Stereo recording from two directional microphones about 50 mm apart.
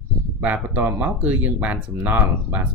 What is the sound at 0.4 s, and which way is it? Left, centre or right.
Speech, right.